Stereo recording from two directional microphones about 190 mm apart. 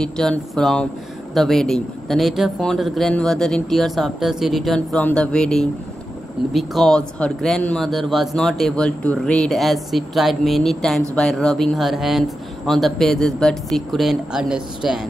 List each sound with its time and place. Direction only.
0.0 s a man's voice: 5° left (ahead or behind)